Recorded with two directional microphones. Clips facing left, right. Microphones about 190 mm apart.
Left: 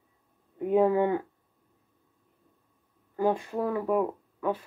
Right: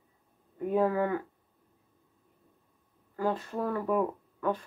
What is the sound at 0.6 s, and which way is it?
Speech, 20° left (ahead or behind).